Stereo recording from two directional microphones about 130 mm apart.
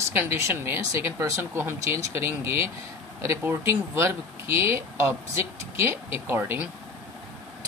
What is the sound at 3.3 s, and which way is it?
A man's voice, 20° right (ahead or behind).